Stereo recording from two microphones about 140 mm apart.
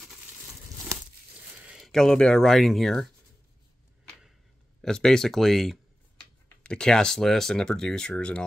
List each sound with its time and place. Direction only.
0.0 s a sound: centre (ahead or behind)
1.6 s speech: 5° right (ahead or behind)
4.8 s speech: 5° left (ahead or behind)